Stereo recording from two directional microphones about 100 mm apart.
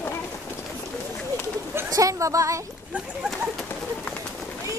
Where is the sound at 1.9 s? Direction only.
35° right (ahead or behind).